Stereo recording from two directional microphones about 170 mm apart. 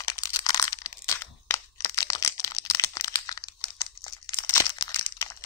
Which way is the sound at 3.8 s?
20° left (ahead or behind).